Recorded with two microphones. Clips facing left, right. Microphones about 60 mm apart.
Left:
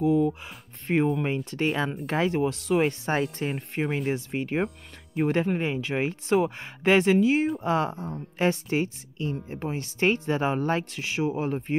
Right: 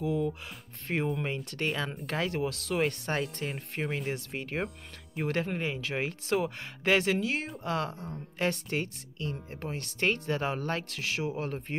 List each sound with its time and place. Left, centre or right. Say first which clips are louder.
0.0 s speech: left 8 dB; left; by 5.3 s centre
5.3 s speech: left 4 dB; centre